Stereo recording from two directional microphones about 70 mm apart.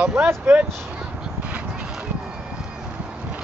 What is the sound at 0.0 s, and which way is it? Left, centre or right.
Speech, centre.